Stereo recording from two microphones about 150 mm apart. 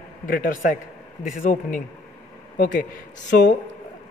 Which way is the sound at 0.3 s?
70° left (ahead or behind).